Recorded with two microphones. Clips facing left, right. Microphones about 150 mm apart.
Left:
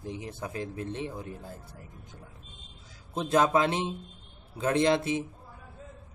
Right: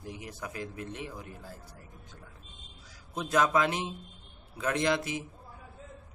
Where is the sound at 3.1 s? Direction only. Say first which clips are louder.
Left 3 dB; 30° left (ahead or behind).